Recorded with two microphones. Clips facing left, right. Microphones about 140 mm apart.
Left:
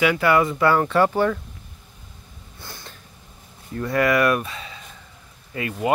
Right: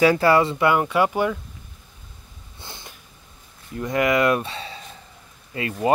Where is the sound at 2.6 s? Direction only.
20° right (ahead or behind).